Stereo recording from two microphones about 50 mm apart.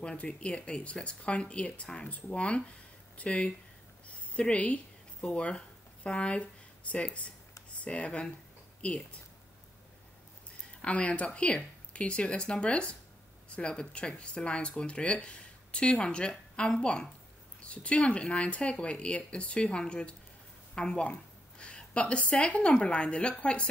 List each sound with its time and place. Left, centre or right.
0.0 s speech: centre
10.8 s a woman's voice: left